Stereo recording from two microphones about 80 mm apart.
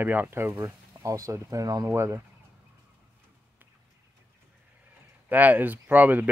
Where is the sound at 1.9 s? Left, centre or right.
Right.